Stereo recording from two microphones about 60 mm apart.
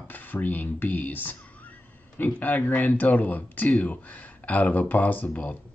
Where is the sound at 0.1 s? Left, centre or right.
Left.